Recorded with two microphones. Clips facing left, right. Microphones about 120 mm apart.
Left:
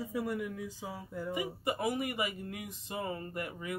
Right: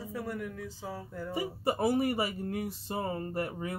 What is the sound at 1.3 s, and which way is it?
Speech, 35° right (ahead or behind).